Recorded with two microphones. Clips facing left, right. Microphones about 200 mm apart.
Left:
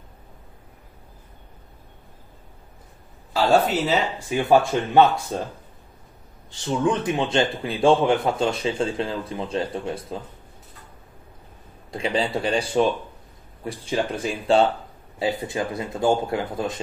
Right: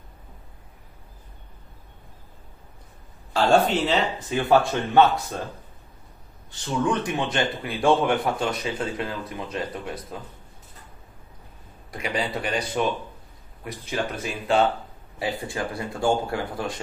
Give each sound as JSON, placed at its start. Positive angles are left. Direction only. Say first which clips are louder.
{"t": 3.3, "sound": "a man's voice", "louder": "even", "side_deg": 5}
{"t": 6.6, "sound": "a man's voice", "louder": "left 2 dB", "side_deg": 20}
{"t": 11.9, "sound": "a man's voice", "louder": "left 4 dB", "side_deg": 25}